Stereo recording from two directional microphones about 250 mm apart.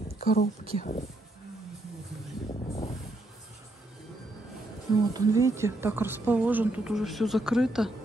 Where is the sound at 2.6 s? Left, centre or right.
Left.